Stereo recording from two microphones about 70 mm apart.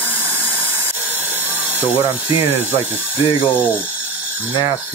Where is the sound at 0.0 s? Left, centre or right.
Right.